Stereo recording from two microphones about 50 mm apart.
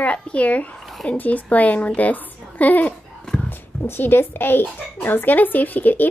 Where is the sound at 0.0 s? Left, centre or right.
Left.